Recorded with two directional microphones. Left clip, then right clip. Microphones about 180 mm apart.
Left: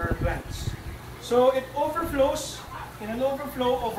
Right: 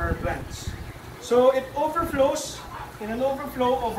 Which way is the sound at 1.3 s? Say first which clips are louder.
Right 2 dB; centre (ahead or behind).